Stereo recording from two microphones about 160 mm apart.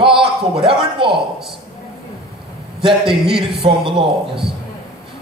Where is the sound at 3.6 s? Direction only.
35° right (ahead or behind).